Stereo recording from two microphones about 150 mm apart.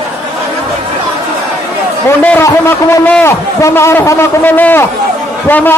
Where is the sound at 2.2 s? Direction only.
10° left (ahead or behind).